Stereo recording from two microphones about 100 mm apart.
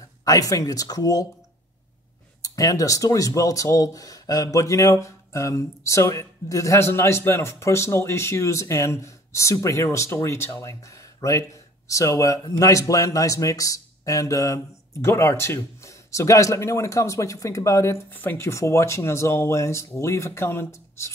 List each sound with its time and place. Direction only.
0.2 s speech: 35° left (ahead or behind)
2.4 s speech: 35° left (ahead or behind)